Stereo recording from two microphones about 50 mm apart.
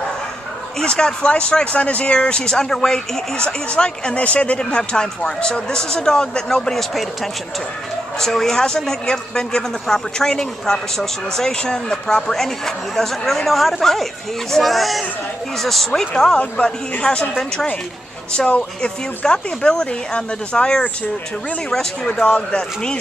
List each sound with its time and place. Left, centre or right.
0.7 s speech: centre
8.2 s speech: centre
16.3 s speech: centre
18.3 s speech: centre